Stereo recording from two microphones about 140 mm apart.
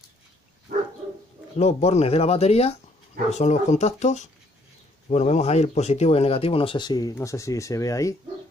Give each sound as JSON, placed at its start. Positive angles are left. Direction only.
{"t": 1.6, "sound": "speech", "side_deg": 50}